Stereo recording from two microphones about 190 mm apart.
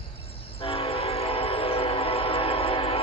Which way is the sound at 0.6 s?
30° left (ahead or behind).